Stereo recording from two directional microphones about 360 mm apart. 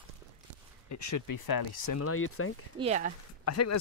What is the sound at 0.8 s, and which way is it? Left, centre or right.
Speech, left.